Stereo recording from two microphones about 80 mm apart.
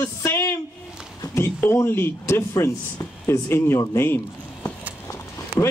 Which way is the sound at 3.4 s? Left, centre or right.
Left.